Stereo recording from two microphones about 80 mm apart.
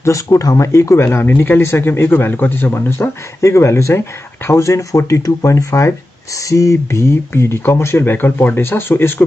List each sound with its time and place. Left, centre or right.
0.0 s speech: left